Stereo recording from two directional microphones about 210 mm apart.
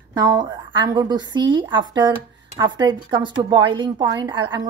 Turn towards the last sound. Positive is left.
turn(degrees=-20)  # may be behind; listen again after turning